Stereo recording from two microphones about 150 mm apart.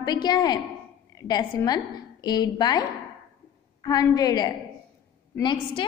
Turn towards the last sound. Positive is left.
turn(degrees=30)  # may be behind; listen again after turning